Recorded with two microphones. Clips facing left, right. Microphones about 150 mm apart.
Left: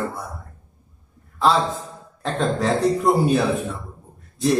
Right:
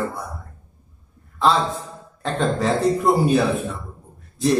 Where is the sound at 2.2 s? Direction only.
Centre (ahead or behind).